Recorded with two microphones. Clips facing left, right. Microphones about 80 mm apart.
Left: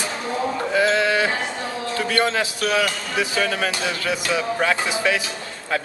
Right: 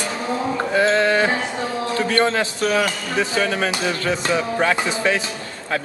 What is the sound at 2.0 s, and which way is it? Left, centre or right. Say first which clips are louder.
A man's voice: right 2 dB; right.